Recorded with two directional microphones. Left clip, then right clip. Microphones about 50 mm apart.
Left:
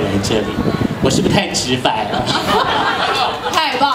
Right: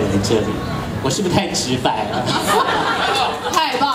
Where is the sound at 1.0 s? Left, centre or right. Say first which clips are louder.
Left 3 dB; left.